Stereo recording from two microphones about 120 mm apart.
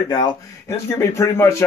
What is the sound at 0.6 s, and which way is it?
Speech, 25° left (ahead or behind).